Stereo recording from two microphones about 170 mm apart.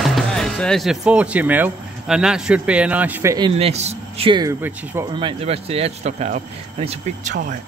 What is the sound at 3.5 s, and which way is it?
Speech, 40° right (ahead or behind).